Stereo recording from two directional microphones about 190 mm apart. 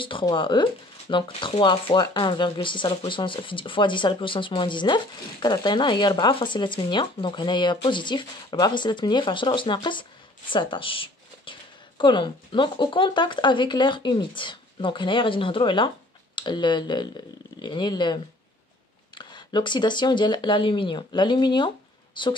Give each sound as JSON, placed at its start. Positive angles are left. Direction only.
{"t": 0.0, "sound": "speech", "side_deg": 25}